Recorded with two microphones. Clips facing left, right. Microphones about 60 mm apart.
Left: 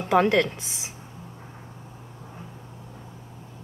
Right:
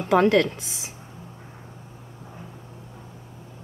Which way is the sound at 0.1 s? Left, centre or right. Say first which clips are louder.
Right 2 dB; centre.